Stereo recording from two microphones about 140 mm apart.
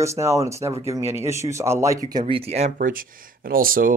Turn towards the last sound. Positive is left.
turn(degrees=-90)